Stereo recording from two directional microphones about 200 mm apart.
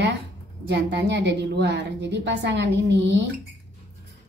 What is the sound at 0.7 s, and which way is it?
A woman's voice, 60° right (ahead or behind).